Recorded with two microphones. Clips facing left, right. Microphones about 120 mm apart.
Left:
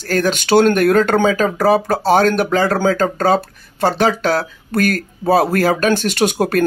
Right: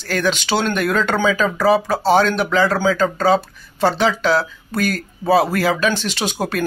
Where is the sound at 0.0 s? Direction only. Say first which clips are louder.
Left 3 dB; 45° left (ahead or behind).